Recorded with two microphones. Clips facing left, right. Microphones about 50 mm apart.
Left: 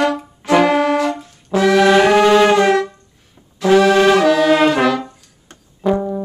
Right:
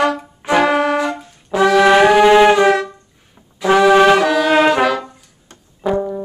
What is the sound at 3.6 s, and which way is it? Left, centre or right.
Brass instrument, centre.